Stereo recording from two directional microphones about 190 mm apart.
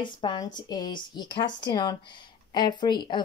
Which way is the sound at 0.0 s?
25° left (ahead or behind).